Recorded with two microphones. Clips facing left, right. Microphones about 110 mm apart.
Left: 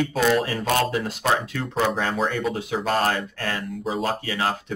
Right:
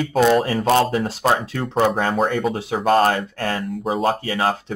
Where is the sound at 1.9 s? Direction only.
50° right (ahead or behind).